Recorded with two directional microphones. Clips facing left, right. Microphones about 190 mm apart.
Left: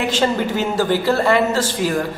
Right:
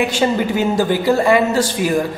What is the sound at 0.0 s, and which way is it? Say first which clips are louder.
A man's voice: right 2 dB; 10° right (ahead or behind).